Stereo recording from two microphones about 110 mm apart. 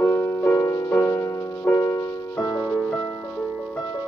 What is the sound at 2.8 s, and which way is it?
Music, 10° left (ahead or behind).